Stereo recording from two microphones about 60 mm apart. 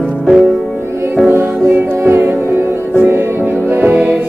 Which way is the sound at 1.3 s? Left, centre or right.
Right.